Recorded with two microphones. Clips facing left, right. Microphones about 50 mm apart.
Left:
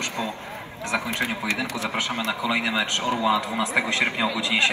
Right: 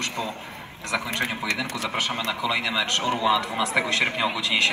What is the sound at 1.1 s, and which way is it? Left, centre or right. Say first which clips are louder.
Speech: left 1 dB; right.